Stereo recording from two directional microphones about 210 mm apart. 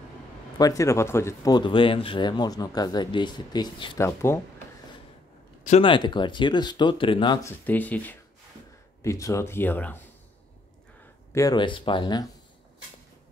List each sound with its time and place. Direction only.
0.6 s speech: 15° left (ahead or behind)
5.6 s speech: 30° left (ahead or behind)
7.4 s speech: 10° left (ahead or behind)
11.3 s speech: 20° left (ahead or behind)